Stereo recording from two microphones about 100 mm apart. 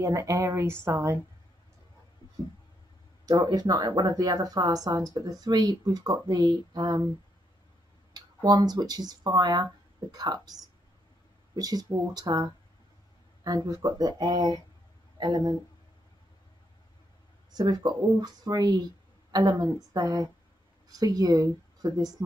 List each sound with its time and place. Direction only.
0.0 s a woman's voice: 30° right (ahead or behind)
3.3 s speech: 45° right (ahead or behind)
8.1 s speech: 40° right (ahead or behind)
17.5 s speech: 40° right (ahead or behind)